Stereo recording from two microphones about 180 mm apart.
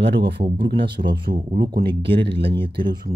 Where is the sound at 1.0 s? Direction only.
45° right (ahead or behind).